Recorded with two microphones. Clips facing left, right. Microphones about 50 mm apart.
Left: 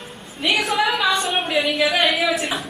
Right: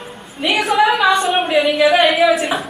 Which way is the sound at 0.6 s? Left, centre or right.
Centre.